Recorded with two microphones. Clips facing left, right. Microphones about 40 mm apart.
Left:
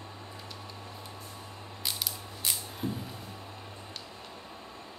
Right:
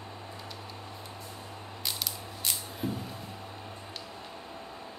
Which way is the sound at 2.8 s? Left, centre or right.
Right.